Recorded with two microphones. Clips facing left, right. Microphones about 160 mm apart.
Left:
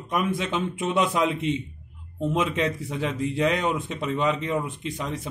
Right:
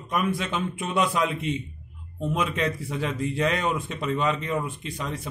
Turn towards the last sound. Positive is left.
turn(degrees=20)  # may be behind; listen again after turning